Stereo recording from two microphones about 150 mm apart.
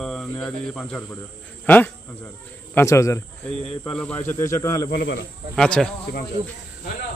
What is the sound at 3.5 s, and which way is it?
A man's voice, 5° left (ahead or behind).